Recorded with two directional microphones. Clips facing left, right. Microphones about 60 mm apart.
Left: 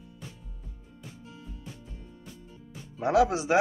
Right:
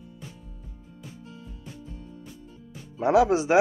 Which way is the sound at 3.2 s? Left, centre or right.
Right.